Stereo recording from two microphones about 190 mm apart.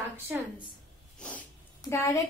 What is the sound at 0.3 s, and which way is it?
Speech, 10° right (ahead or behind).